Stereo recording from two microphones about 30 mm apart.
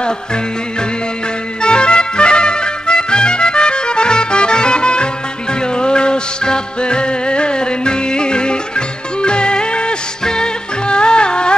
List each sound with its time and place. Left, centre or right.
0.0 s music: left